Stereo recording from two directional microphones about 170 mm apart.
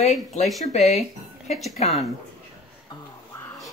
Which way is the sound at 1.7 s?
40° left (ahead or behind).